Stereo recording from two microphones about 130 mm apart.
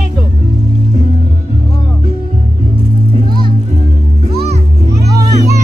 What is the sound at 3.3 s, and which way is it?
Music, 35° right (ahead or behind).